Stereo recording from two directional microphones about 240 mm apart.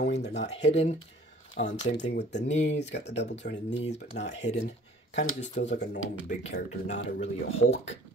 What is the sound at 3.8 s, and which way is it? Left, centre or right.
Speech, left.